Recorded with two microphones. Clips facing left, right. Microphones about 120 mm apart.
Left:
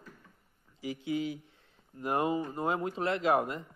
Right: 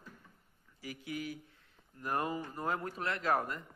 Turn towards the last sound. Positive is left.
turn(degrees=20)  # may be behind; listen again after turning